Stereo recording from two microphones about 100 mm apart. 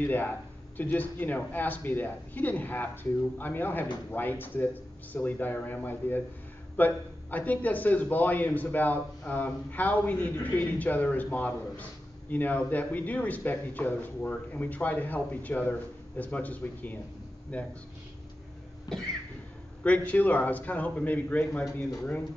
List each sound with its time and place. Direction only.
0.0 s a man's voice: 20° left (ahead or behind)
19.8 s speech: 15° left (ahead or behind)